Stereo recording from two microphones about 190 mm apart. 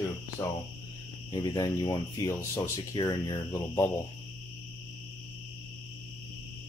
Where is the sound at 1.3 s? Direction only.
20° left (ahead or behind).